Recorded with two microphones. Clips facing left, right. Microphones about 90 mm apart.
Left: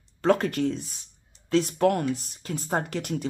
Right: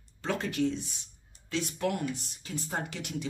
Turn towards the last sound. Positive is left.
turn(degrees=50)  # may be behind; listen again after turning